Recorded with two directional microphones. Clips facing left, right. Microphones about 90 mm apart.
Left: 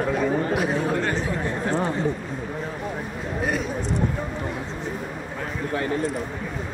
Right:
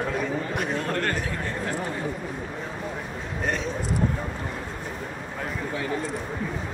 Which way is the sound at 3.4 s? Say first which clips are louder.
Left 3 dB; 5° left (ahead or behind).